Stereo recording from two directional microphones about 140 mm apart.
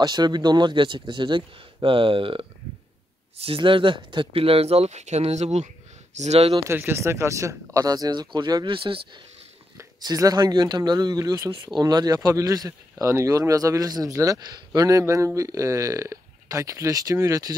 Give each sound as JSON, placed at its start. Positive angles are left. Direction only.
{"t": 0.0, "sound": "a man's voice", "side_deg": -30}
{"t": 6.5, "sound": "a man's voice", "side_deg": -15}
{"t": 9.8, "sound": "a man's voice", "side_deg": -25}